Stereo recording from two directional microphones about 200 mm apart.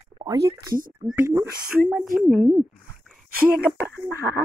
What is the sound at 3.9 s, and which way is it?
Speech, 15° left (ahead or behind).